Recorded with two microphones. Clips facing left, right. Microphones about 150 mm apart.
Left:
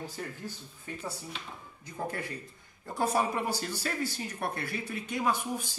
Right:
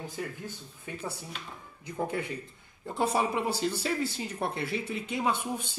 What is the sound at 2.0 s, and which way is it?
Speech, 20° right (ahead or behind).